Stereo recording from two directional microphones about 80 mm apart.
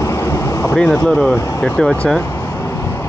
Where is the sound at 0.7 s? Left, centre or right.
Centre.